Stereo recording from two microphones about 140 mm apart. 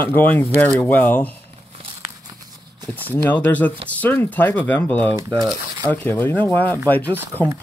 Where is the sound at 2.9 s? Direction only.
15° left (ahead or behind).